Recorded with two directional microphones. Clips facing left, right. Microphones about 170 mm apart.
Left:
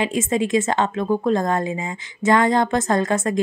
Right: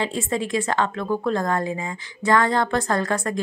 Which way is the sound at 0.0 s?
20° left (ahead or behind).